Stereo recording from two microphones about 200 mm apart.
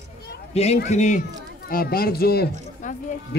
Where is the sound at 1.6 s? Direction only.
50° left (ahead or behind).